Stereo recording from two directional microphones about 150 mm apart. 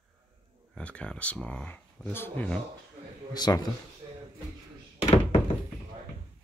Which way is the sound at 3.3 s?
25° left (ahead or behind).